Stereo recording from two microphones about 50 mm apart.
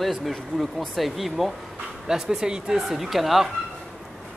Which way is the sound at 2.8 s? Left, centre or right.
Centre.